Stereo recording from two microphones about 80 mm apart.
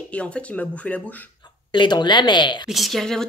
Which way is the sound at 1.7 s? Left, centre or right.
Left.